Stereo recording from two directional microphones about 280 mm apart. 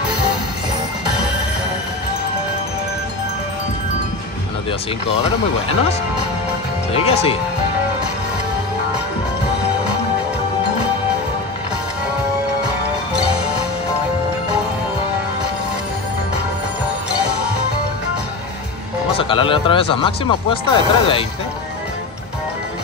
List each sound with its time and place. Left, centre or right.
6.9 s speech: left
19.1 s speech: centre